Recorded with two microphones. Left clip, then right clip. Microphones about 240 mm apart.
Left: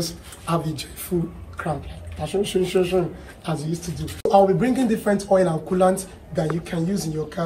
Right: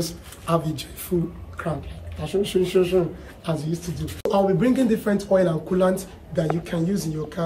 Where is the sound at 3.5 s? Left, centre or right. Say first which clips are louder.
Right 1 dB; right.